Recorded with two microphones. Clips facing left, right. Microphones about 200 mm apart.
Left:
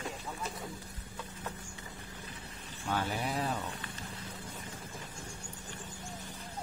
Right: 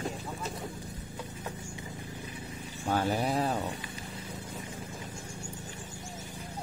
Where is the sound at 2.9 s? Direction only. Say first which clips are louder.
Right 6 dB; 40° right (ahead or behind).